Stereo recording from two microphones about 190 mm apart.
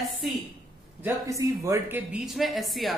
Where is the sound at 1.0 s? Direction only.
15° right (ahead or behind).